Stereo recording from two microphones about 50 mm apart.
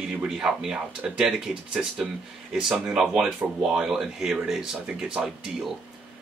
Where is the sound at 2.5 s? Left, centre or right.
Centre.